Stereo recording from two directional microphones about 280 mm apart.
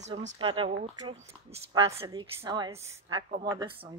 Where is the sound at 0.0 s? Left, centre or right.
Right.